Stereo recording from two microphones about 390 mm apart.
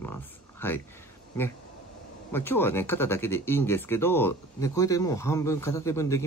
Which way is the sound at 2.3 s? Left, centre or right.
Centre.